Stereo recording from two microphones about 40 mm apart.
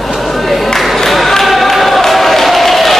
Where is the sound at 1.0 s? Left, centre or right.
Centre.